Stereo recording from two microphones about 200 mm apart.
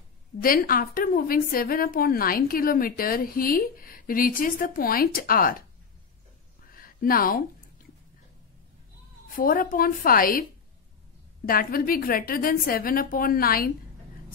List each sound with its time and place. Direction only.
0.4 s a woman's voice: 45° left (ahead or behind)
6.6 s a sound: 45° left (ahead or behind)
9.3 s a woman's voice: 45° left (ahead or behind)
11.4 s a woman's voice: 45° left (ahead or behind)